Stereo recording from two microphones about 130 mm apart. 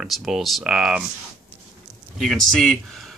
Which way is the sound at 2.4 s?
5° left (ahead or behind).